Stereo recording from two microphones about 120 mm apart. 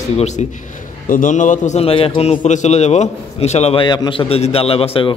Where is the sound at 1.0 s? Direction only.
90° left.